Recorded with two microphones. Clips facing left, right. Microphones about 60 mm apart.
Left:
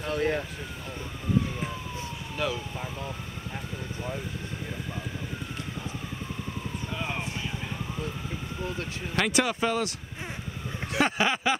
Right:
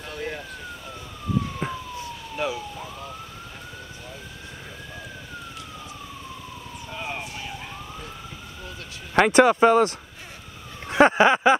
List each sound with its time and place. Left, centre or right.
0.1 s police car: left
2.3 s speech: centre
9.1 s speech: right
11.0 s a sound: right